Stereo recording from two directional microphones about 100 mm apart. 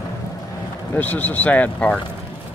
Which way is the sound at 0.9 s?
15° left (ahead or behind).